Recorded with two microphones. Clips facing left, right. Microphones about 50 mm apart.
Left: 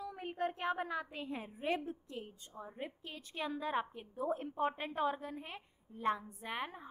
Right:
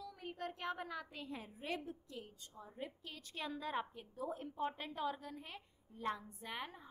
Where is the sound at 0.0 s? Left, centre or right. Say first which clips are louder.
Left 7 dB; left.